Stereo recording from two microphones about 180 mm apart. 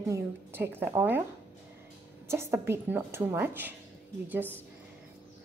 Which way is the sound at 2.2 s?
15° right (ahead or behind).